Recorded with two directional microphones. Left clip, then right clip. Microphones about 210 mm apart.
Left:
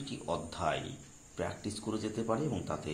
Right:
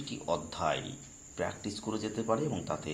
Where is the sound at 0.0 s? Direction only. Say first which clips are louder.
Right 3 dB; 10° right (ahead or behind).